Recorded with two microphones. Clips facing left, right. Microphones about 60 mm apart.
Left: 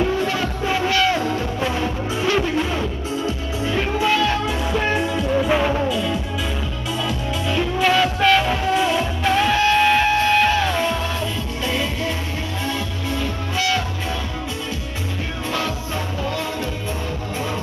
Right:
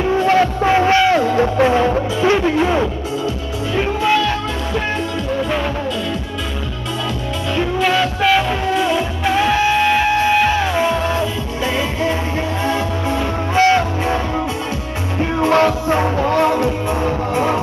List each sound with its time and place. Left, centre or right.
0.3 s music: right
1.1 s music: right
3.7 s music: centre
7.5 s music: centre; by 12.1 s right
13.6 s music: right
15.4 s music: right